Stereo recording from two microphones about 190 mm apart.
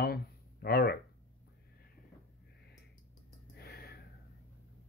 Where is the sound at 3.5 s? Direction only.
55° left (ahead or behind).